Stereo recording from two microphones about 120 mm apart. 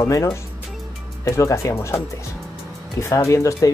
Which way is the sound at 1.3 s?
25° left (ahead or behind).